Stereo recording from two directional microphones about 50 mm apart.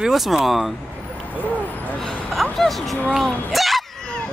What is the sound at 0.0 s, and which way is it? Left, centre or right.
Speech, centre.